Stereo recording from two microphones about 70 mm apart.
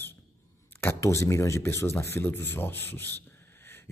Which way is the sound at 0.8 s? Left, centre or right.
Left.